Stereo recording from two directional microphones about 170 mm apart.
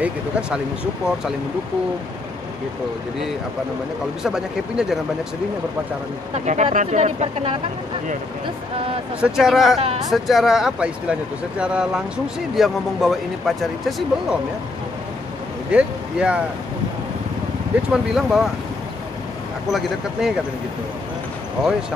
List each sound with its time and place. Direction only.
0.0 s speech: 5° right (ahead or behind)
4.2 s speech: 5° right (ahead or behind)
6.3 s speech: 45° right (ahead or behind)
9.2 s speech: centre (ahead or behind)
15.7 s speech: 5° right (ahead or behind)
17.9 s speech: centre (ahead or behind)
19.7 s speech: 5° right (ahead or behind)